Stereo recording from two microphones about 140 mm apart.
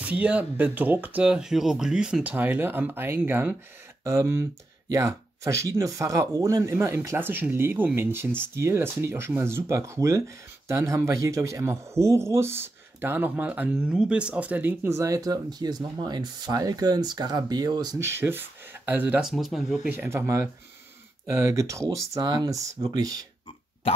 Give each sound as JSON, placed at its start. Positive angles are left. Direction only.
{"t": 0.0, "sound": "speech", "side_deg": -10}